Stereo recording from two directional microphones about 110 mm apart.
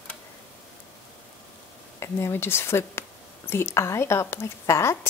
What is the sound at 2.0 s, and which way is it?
A woman's voice, 25° left (ahead or behind).